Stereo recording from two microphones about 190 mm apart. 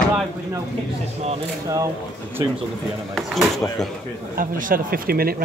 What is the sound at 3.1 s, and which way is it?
Speech, centre (ahead or behind).